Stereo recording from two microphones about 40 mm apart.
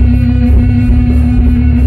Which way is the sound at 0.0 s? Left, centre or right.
Centre.